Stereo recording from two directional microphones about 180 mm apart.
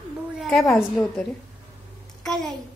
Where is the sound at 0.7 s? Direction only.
5° left (ahead or behind).